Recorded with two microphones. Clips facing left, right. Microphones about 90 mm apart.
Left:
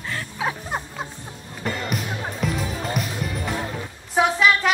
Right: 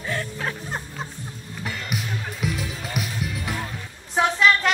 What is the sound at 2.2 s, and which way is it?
Music, 40° left (ahead or behind).